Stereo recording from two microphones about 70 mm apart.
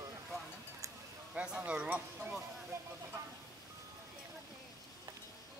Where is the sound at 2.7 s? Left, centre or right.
Right.